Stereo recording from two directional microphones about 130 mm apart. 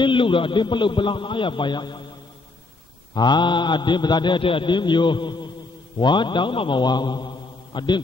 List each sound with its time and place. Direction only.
0.0 s a man's voice: 40° left (ahead or behind)
3.2 s a man's voice: 35° left (ahead or behind)